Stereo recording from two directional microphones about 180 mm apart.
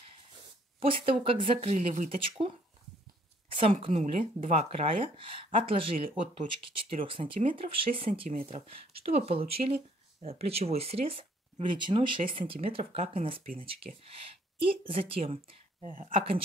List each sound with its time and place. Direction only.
0.7 s speech: 30° right (ahead or behind)
3.4 s a sound: 30° right (ahead or behind)
3.8 s speech: 35° right (ahead or behind)